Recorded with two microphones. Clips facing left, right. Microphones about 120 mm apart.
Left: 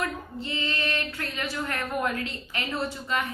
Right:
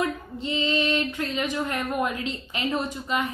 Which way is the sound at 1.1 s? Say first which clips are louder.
Right 5 dB; 20° right (ahead or behind).